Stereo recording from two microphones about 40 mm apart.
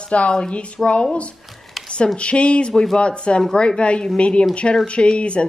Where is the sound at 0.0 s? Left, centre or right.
Left.